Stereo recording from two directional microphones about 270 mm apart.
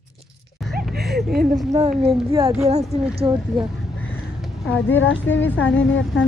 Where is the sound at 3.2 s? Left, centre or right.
Centre.